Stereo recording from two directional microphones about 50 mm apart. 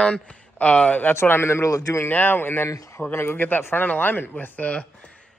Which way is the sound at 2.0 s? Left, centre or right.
Left.